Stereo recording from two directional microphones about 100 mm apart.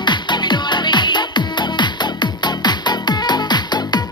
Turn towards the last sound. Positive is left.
turn(degrees=45)  # may be behind; listen again after turning